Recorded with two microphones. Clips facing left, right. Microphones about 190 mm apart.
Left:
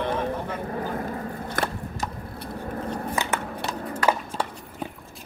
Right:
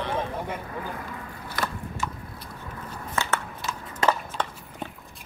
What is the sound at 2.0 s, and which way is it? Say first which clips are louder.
Vehicle: even; 40° left (ahead or behind).